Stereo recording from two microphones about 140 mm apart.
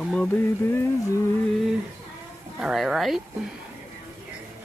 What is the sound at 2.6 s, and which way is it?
Speech, 5° right (ahead or behind).